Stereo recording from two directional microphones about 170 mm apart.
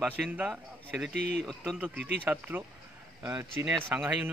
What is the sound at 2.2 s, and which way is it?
Speech, 10° right (ahead or behind).